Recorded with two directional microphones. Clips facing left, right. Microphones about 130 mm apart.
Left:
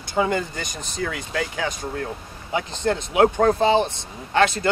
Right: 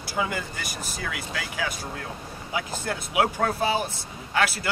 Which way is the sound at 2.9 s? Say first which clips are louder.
Left 7 dB; 30° left (ahead or behind).